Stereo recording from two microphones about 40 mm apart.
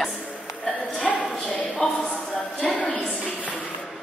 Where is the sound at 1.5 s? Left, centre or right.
Left.